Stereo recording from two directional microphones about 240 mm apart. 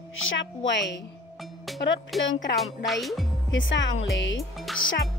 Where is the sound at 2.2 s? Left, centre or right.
Left.